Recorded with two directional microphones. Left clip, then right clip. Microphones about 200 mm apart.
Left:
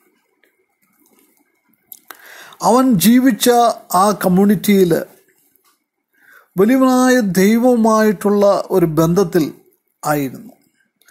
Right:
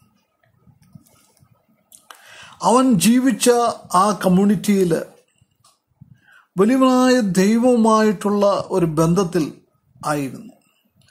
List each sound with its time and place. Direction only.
2.0 s speech: 20° left (ahead or behind)
6.5 s speech: 10° left (ahead or behind)